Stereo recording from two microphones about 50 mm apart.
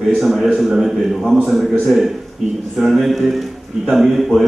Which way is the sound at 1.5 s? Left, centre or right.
Centre.